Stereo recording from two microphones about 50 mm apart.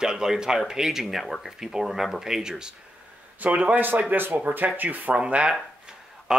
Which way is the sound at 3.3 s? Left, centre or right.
Right.